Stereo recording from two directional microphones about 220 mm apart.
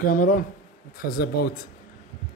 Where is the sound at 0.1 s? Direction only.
40° left (ahead or behind).